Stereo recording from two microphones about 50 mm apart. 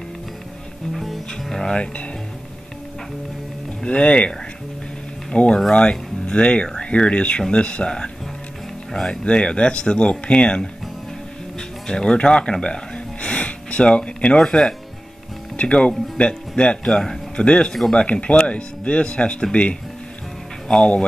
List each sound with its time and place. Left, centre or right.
0.9 s music: centre
1.6 s speech: centre
3.8 s speech: left; by 9.2 s centre
9.2 s speech: left
11.9 s speech: centre
15.5 s speech: left
17.4 s speech: left